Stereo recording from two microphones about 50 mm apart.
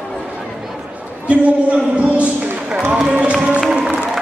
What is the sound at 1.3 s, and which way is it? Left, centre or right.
Speech, right.